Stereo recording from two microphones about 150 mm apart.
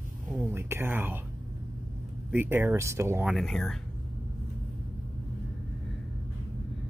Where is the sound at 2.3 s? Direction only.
15° right (ahead or behind).